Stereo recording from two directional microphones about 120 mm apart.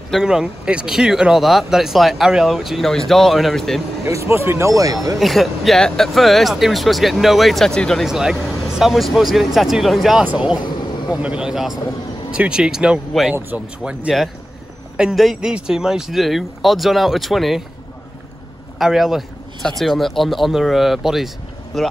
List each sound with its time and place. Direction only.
0.1 s speech: 5° right (ahead or behind)
4.0 s speech: 25° right (ahead or behind)
5.2 s speech: centre (ahead or behind)
18.8 s speech: 5° right (ahead or behind)